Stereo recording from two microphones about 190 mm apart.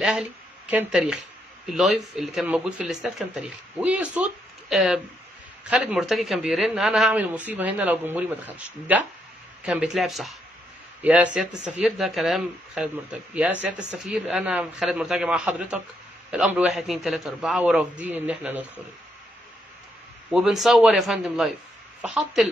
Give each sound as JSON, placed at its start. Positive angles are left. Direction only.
{"t": 0.0, "sound": "speech", "side_deg": -5}
{"t": 20.2, "sound": "speech", "side_deg": -5}